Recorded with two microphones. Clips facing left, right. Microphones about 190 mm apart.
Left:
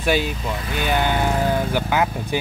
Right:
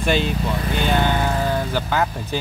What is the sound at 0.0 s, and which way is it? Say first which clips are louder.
Speech: right 1 dB; 5° left (ahead or behind).